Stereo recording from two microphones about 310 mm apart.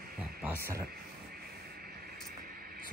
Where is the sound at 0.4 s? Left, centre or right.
Centre.